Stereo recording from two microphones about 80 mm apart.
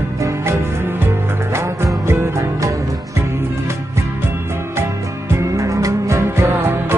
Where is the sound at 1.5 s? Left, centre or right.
Right.